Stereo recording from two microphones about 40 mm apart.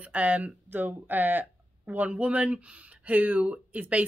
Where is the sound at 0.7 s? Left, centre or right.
Right.